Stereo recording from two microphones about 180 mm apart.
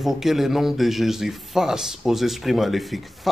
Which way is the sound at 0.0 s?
Centre (ahead or behind).